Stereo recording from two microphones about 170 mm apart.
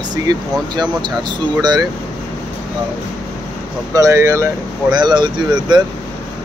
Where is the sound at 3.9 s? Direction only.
20° right (ahead or behind).